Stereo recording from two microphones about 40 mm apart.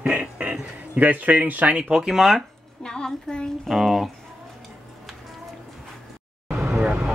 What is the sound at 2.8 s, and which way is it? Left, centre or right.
Speech, centre.